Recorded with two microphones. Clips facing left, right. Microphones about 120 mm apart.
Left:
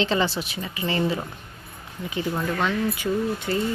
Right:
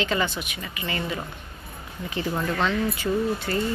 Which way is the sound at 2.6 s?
15° left (ahead or behind).